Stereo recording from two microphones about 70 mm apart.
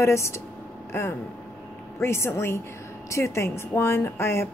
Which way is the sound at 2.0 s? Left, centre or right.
Left.